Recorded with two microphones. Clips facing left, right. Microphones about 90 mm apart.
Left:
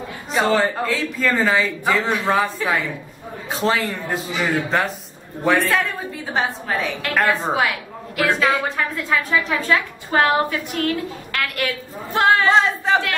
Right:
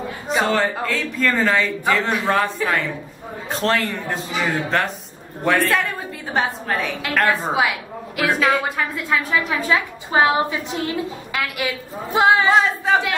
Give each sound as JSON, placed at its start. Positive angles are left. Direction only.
{"t": 0.3, "sound": "a woman's voice", "side_deg": 0}
{"t": 11.3, "sound": "a woman's voice", "side_deg": -10}
{"t": 12.5, "sound": "a woman's voice", "side_deg": -5}